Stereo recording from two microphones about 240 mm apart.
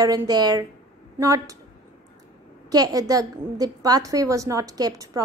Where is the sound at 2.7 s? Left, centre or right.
Centre.